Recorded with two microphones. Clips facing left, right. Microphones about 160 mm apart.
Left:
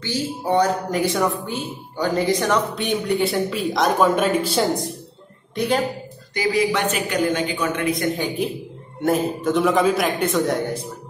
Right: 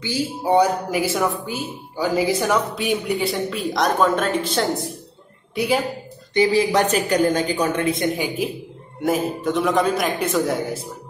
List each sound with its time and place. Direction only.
0.0 s speech: 10° right (ahead or behind); by 4.8 s 10° left (ahead or behind)
5.5 s a woman's voice: 5° right (ahead or behind)
6.3 s a man's voice: 30° right (ahead or behind)
8.2 s speech: centre (ahead or behind)